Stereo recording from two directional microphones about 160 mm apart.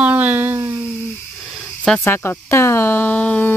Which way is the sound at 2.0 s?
15° left (ahead or behind).